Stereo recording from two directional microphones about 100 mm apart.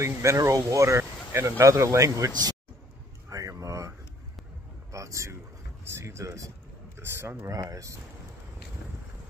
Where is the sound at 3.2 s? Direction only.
35° right (ahead or behind).